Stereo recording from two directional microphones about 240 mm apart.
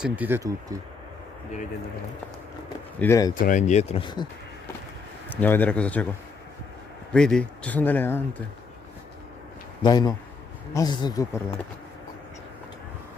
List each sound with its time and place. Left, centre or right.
0.0 s speech: centre
3.0 s speech: centre
3.3 s speech: left
5.3 s speech: centre
7.1 s speech: centre
9.8 s speech: centre